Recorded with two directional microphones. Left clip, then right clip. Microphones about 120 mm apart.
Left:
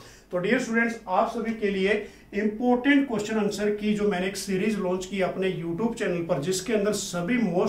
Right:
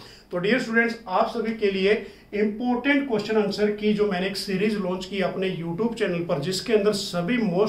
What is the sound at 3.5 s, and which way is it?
Speech, 25° right (ahead or behind).